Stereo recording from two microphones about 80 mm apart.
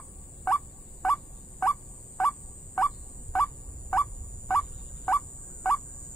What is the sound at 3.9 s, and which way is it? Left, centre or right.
Fowl, centre.